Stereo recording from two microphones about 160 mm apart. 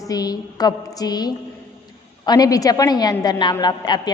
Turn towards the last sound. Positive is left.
turn(degrees=25)  # may be behind; listen again after turning